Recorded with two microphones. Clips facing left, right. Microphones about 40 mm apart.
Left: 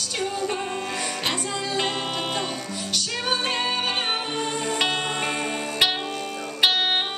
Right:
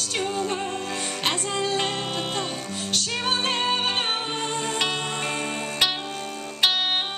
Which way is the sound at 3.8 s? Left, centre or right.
Left.